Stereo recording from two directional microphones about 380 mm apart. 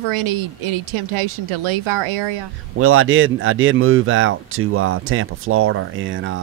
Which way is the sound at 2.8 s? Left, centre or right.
Right.